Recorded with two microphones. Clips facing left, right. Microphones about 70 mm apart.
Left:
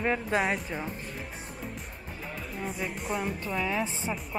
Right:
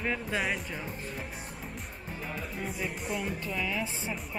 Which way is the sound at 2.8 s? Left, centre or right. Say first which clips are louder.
Left 3 dB; centre.